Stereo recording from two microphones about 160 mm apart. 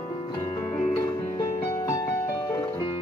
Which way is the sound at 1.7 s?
20° left (ahead or behind).